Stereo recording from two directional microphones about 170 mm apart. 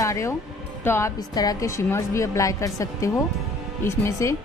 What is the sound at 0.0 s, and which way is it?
Music, 15° left (ahead or behind).